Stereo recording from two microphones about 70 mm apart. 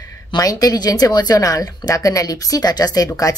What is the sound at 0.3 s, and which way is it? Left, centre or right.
Speech, left.